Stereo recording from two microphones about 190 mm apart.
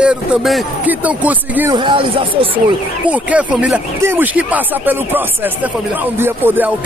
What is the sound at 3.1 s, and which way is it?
Speech, 5° right (ahead or behind).